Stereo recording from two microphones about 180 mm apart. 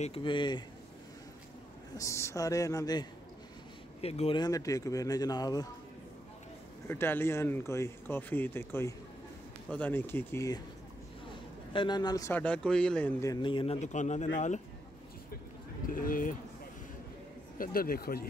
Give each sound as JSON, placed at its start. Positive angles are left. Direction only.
{"t": 0.0, "sound": "speech", "side_deg": 30}
{"t": 2.0, "sound": "speech", "side_deg": 15}
{"t": 4.0, "sound": "speech", "side_deg": 35}
{"t": 4.4, "sound": "speech", "side_deg": 20}
{"t": 6.9, "sound": "speech", "side_deg": 10}
{"t": 11.7, "sound": "speech", "side_deg": 25}
{"t": 13.2, "sound": "speech", "side_deg": 25}
{"t": 13.7, "sound": "speech", "side_deg": 40}
{"t": 15.9, "sound": "speech", "side_deg": 50}
{"t": 17.6, "sound": "speech", "side_deg": 55}